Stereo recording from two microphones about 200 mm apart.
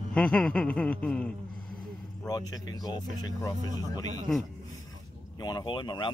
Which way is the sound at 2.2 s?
20° left (ahead or behind).